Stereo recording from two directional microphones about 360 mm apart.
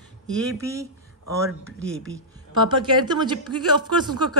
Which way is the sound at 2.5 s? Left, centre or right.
Centre.